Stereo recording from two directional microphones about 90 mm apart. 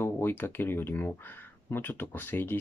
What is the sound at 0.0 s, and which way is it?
Speech, 25° left (ahead or behind).